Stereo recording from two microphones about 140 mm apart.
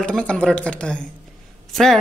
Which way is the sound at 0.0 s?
5° left (ahead or behind).